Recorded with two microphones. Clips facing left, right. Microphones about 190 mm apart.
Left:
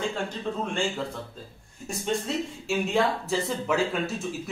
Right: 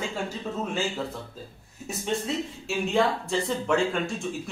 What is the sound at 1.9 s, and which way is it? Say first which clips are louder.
Speech: even; centre (ahead or behind).